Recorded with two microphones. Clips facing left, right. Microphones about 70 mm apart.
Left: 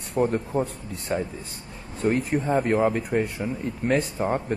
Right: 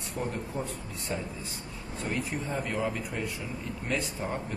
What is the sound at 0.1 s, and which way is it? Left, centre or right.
A man's voice, left.